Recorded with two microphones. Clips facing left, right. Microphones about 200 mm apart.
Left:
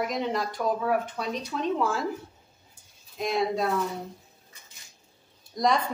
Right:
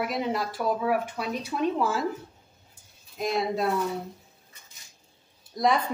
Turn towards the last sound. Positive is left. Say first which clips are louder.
# right 1 dB
turn(degrees=-5)  # may be behind; listen again after turning